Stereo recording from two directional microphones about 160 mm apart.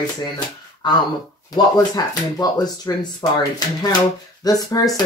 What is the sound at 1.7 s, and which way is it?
Speech, 25° left (ahead or behind).